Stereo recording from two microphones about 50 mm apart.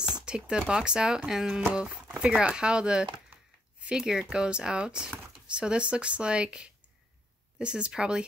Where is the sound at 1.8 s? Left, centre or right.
Right.